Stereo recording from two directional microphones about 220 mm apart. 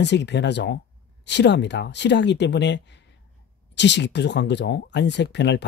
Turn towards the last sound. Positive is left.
turn(degrees=50)  # may be behind; listen again after turning